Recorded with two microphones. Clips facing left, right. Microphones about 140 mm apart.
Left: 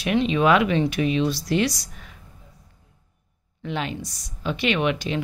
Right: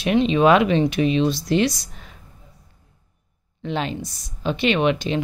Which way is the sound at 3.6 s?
30° right (ahead or behind).